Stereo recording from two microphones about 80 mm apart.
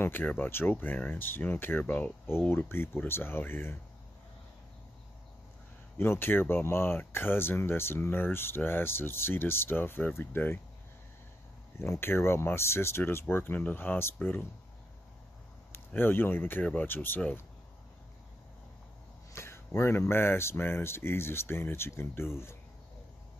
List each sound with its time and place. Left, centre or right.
0.0 s speech: left
5.9 s speech: left
12.0 s speech: left
15.7 s speech: left
19.3 s a sound: left
19.8 s speech: left